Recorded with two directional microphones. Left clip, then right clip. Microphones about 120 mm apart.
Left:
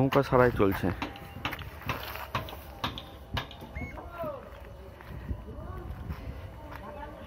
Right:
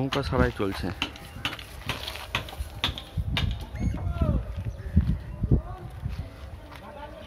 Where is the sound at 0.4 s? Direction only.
5° left (ahead or behind).